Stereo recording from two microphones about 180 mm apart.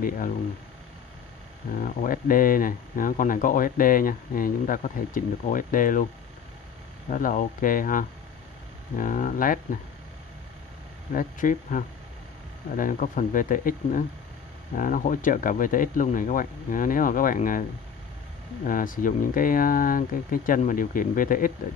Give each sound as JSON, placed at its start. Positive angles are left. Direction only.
{"t": 1.8, "sound": "speech", "side_deg": 50}
{"t": 7.1, "sound": "speech", "side_deg": 50}
{"t": 11.1, "sound": "speech", "side_deg": 50}